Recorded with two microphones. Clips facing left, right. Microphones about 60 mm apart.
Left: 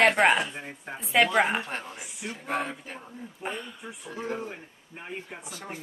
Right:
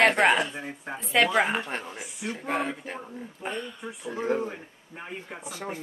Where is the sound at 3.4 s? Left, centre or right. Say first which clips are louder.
Right 1 dB; centre.